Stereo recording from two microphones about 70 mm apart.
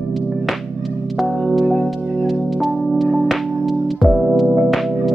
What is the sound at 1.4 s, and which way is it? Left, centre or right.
Music, centre.